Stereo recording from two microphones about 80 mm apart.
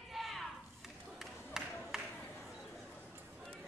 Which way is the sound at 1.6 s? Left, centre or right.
Centre.